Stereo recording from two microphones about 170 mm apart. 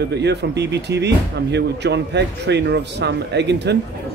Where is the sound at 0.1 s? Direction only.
90° right.